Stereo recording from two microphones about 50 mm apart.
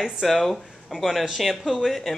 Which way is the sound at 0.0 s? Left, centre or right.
Centre.